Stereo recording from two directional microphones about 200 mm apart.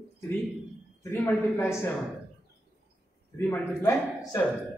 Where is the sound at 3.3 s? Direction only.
10° left (ahead or behind).